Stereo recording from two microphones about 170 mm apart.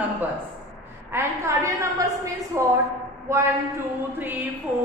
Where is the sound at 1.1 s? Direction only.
15° right (ahead or behind).